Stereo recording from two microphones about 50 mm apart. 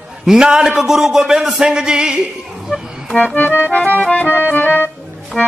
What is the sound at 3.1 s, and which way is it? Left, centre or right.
Accordion, left.